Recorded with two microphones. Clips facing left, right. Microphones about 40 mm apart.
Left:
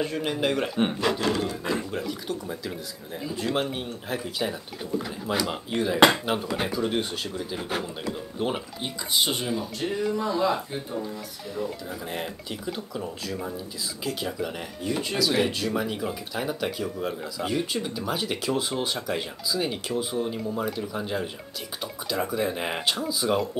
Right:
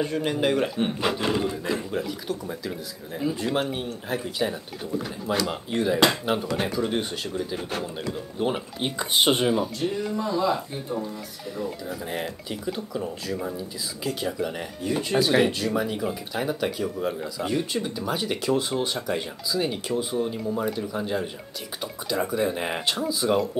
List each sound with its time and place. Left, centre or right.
0.0 s speech: centre
1.0 s speech: centre
1.7 s speech: centre
5.2 s speech: centre
8.8 s speech: right
10.1 s speech: centre
11.5 s speech: centre